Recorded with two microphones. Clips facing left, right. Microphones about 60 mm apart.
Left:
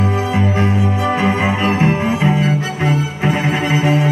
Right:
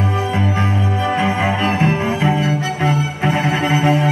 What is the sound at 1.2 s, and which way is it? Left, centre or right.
Music, centre.